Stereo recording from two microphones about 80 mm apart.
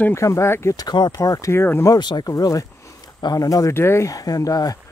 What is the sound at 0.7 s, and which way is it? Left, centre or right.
Speech, left.